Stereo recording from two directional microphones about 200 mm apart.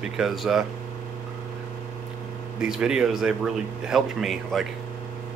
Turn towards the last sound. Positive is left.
turn(degrees=0)  # may be behind; listen again after turning